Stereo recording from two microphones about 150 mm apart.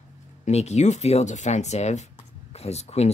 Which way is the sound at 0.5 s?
45° left (ahead or behind).